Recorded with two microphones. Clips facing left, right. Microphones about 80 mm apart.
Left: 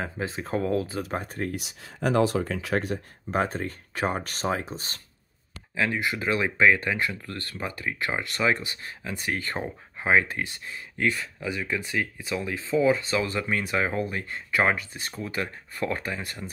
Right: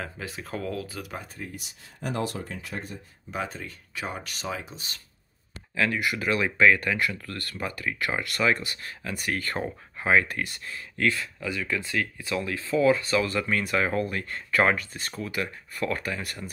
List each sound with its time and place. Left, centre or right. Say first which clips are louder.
0.0 s speech: left 5 dB; left
1.4 s speech: left 8 dB; left
3.3 s speech: left 7 dB; left
5.8 s speech: even; left
15.3 s speech: even; left